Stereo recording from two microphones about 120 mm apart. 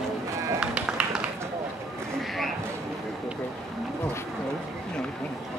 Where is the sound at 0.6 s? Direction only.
10° right (ahead or behind).